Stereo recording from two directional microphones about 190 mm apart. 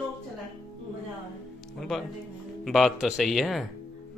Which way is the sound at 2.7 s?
Centre (ahead or behind).